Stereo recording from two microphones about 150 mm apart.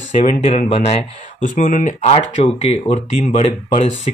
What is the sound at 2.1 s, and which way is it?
Speech, 40° left (ahead or behind).